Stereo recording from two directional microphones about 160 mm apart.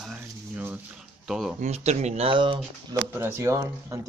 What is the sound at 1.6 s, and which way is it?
Speech, 40° right (ahead or behind).